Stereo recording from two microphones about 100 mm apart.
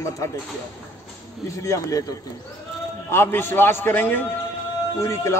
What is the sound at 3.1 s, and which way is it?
A man's voice, 25° left (ahead or behind).